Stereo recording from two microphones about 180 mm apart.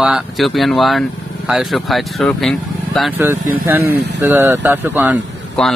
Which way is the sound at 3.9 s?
70° right (ahead or behind).